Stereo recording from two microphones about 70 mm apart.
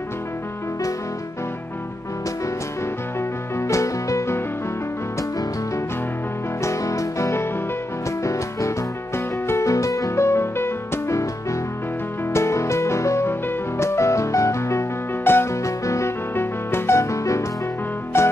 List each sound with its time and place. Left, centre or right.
3.2 s music: left
6.6 s music: left
12.3 s music: left
16.3 s music: left